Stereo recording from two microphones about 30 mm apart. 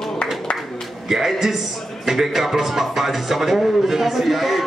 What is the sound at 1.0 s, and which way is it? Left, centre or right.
A man's voice, centre.